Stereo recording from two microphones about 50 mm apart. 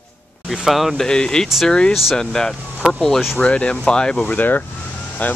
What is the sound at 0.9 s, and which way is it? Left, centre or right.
Speech, centre.